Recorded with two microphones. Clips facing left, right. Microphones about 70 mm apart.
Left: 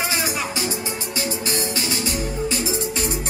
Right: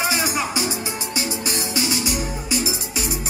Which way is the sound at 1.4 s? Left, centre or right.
Left.